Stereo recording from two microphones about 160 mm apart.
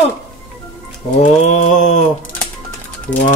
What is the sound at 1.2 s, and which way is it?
Mantra, 45° left (ahead or behind).